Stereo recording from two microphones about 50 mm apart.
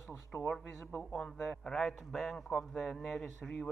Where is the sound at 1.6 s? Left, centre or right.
Centre.